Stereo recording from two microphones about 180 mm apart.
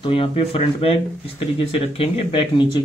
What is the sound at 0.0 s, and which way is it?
Speech, 30° left (ahead or behind).